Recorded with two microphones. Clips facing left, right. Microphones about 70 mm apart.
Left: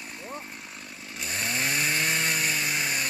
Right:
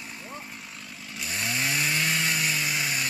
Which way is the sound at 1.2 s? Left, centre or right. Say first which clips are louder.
Even; left.